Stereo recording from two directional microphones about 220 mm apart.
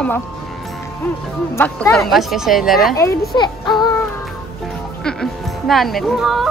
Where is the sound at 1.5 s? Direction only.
10° left (ahead or behind).